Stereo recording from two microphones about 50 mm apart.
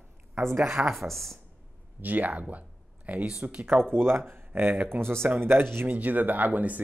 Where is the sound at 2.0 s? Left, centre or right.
Right.